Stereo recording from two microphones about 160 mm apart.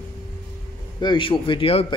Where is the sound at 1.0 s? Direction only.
30° left (ahead or behind).